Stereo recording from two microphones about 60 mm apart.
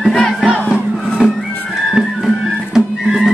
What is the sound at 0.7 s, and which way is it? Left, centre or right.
Crowd, centre.